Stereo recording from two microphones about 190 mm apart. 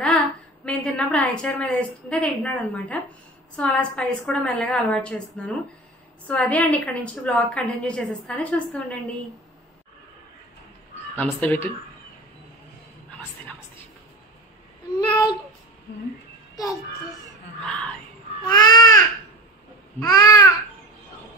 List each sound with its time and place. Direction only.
0.7 s a woman's voice: 5° left (ahead or behind)
11.1 s a woman's voice: 10° left (ahead or behind)
15.0 s a sound: 20° left (ahead or behind)
17.6 s a woman's voice: 5° left (ahead or behind)
18.5 s babbling: 20° left (ahead or behind)